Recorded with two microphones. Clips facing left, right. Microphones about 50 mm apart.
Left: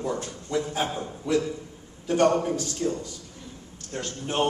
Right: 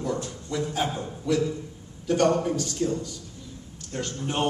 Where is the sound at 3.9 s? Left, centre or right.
Centre.